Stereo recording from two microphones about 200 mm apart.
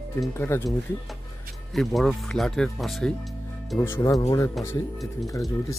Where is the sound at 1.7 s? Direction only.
Centre (ahead or behind).